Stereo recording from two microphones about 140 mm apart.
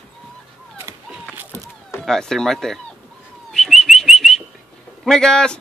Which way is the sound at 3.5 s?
Centre (ahead or behind).